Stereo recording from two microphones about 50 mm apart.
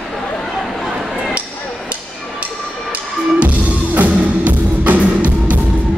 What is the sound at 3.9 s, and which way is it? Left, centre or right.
Music, right.